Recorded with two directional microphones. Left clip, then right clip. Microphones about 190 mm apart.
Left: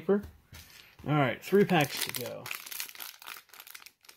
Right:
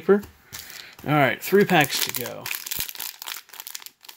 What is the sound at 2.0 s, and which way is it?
Speech, 5° right (ahead or behind).